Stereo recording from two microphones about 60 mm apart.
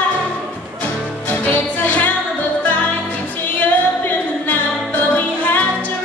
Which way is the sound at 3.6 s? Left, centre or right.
Left.